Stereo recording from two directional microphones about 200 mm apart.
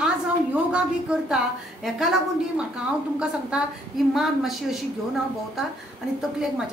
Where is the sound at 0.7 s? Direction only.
5° right (ahead or behind).